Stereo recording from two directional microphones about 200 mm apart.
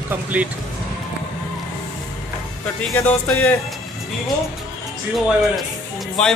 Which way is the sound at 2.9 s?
10° left (ahead or behind).